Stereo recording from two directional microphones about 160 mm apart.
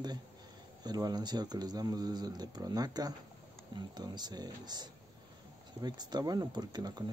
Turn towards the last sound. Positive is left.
turn(degrees=-25)  # may be behind; listen again after turning